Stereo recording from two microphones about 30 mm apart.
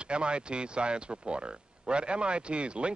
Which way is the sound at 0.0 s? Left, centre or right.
Right.